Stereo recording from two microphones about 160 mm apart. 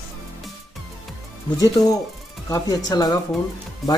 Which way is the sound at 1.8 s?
20° left (ahead or behind).